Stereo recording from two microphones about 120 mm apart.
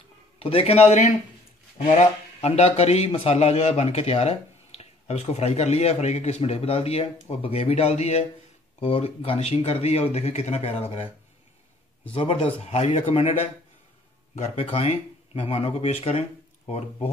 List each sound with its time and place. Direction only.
0.4 s a man's voice: 50° left (ahead or behind)
8.7 s a man's voice: 55° left (ahead or behind)
12.1 s a man's voice: 45° left (ahead or behind); by 17.1 s 65° left (ahead or behind)